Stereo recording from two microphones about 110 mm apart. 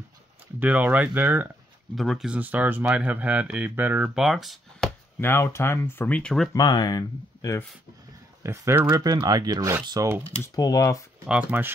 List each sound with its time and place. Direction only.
0.6 s speech: 15° right (ahead or behind)
2.0 s speech: centre (ahead or behind); by 4.1 s 15° right (ahead or behind)
4.1 s speech: 5° right (ahead or behind)
5.2 s speech: 20° left (ahead or behind); by 6.5 s 5° left (ahead or behind)
6.5 s speech: 40° left (ahead or behind)
8.4 s speech: 25° right (ahead or behind)
8.9 s speech: 40° right (ahead or behind)
10.5 s speech: 35° left (ahead or behind)
11.2 s speech: 15° right (ahead or behind)